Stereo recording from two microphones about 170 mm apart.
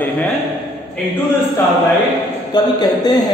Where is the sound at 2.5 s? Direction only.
25° left (ahead or behind).